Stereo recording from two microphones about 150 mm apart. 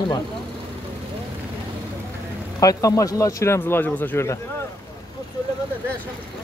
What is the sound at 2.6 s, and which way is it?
Speech, 20° left (ahead or behind).